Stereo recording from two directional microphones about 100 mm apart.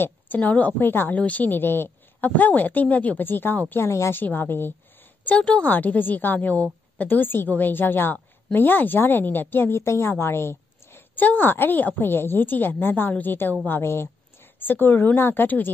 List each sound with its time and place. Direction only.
0.0 s a woman's voice: 15° left (ahead or behind)